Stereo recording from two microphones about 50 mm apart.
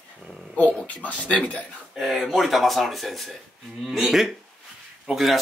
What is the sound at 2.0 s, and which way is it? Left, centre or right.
Speech, centre.